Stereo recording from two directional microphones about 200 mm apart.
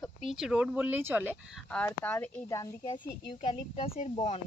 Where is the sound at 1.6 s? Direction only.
5° left (ahead or behind).